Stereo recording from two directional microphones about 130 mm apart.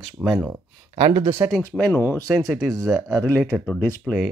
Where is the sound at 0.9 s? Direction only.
40° right (ahead or behind).